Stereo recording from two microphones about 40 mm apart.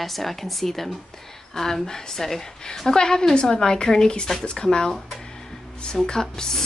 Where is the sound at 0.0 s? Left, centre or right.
Centre.